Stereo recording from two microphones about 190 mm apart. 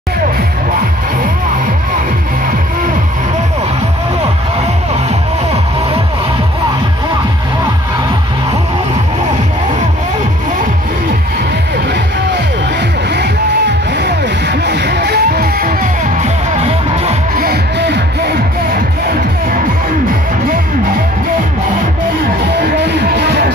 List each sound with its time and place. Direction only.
13.9 s music: 60° right (ahead or behind)
16.6 s music: 35° right (ahead or behind)
17.4 s music: 60° right (ahead or behind)
22.6 s music: 60° right (ahead or behind)